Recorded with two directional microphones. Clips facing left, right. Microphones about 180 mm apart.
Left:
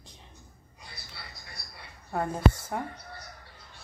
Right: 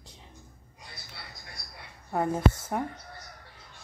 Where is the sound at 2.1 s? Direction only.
15° right (ahead or behind).